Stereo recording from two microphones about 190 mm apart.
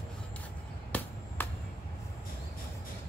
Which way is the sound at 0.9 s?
10° left (ahead or behind).